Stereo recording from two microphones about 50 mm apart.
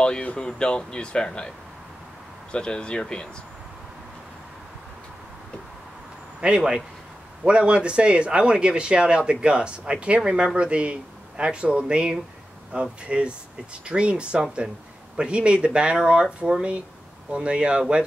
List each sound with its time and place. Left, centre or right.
0.0 s speech: left
2.5 s speech: centre
6.4 s a man's voice: centre